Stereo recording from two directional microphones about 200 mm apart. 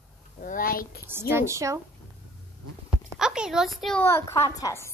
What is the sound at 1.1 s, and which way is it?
Speech, 10° right (ahead or behind).